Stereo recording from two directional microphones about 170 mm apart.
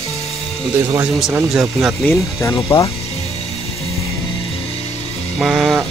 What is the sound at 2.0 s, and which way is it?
Speech, 15° left (ahead or behind).